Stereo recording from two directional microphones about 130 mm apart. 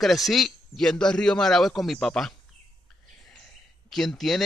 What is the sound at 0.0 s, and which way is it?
Speech, centre (ahead or behind).